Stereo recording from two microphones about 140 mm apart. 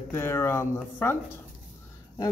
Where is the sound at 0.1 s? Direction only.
20° left (ahead or behind).